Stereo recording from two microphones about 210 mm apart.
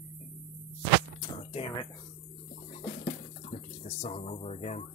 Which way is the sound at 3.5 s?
30° left (ahead or behind).